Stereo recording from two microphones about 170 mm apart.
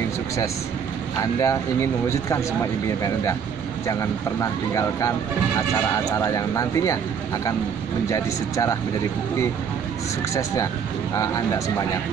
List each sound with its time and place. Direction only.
1.4 s speech: 15° left (ahead or behind)
3.8 s speech: 20° left (ahead or behind)
6.1 s speech: 20° left (ahead or behind)
8.1 s speech: 20° left (ahead or behind)
10.3 s speech: 20° left (ahead or behind)